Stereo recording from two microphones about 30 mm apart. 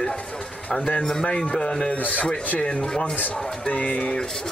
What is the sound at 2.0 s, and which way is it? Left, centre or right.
Speech, left.